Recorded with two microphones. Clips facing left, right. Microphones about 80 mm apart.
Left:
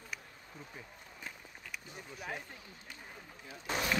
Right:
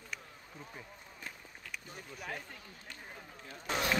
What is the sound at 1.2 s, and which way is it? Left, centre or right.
Run, centre.